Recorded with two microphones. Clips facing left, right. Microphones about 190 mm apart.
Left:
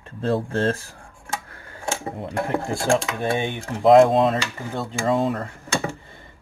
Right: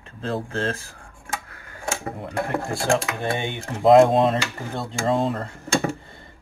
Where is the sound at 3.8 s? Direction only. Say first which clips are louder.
Even; centre (ahead or behind).